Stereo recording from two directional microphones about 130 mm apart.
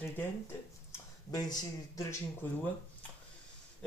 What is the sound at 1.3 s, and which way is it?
Speech, 30° left (ahead or behind).